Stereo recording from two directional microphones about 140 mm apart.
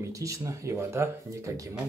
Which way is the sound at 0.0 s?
20° right (ahead or behind).